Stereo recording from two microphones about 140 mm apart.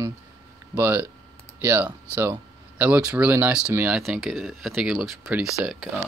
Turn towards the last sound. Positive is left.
turn(degrees=0)  # may be behind; listen again after turning